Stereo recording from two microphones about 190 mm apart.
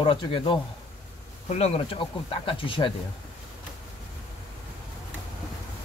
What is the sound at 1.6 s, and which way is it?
Speech, 30° left (ahead or behind).